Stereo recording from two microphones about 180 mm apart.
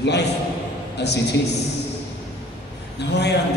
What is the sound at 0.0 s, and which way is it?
A man's voice, 70° left (ahead or behind).